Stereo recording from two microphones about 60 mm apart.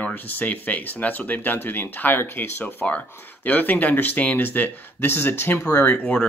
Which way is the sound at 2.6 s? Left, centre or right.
Left.